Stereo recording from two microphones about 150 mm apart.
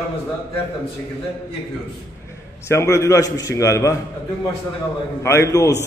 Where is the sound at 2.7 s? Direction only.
20° left (ahead or behind).